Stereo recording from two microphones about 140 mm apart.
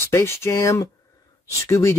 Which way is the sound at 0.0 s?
20° left (ahead or behind).